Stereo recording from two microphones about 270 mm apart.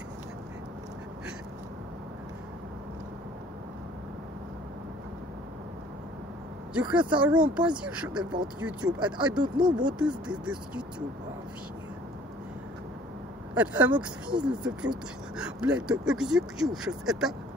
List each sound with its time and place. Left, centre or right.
6.7 s speech: centre
7.0 s speech: centre
7.2 s speech: centre
9.4 s speech: centre
9.8 s speech: centre
13.6 s speech: centre